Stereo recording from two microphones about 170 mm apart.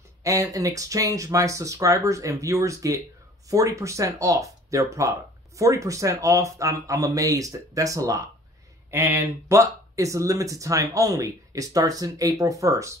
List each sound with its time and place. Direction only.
0.2 s speech: 20° right (ahead or behind)